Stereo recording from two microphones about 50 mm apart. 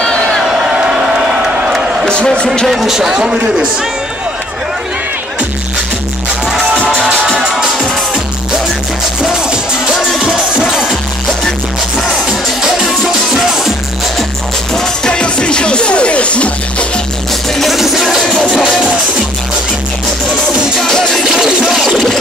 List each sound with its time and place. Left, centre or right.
0.0 s crowd: centre
0.4 s a sound: centre
2.0 s speech: centre
2.7 s a man's voice: centre
3.1 s a man's voice: centre
7.2 s music: centre
9.2 s music: centre
12.6 s music: centre
15.0 s music: centre
17.6 s music: centre
20.8 s music: centre
21.2 s a sound: centre